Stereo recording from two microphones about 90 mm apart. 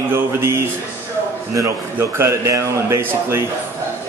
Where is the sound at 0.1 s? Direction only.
30° right (ahead or behind).